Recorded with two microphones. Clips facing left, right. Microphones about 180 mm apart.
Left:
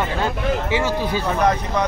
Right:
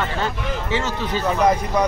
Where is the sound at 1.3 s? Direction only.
10° right (ahead or behind).